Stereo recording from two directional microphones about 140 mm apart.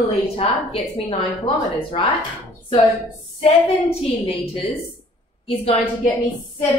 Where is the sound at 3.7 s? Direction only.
50° left (ahead or behind).